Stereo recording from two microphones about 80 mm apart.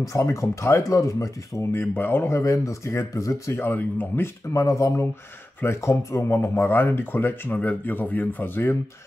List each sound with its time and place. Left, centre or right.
0.0 s speech: left
1.7 s speech: left
3.6 s speech: left
4.5 s speech: left